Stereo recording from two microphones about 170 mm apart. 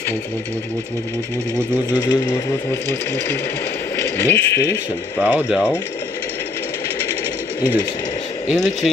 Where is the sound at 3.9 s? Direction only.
15° left (ahead or behind).